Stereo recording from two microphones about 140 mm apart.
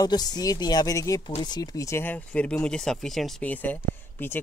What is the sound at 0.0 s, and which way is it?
Speech, 30° left (ahead or behind).